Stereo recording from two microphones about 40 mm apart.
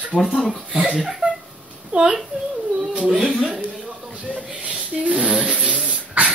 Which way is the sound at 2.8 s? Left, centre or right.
Centre.